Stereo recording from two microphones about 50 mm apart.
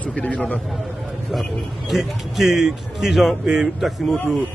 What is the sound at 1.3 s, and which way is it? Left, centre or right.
A man's voice, centre.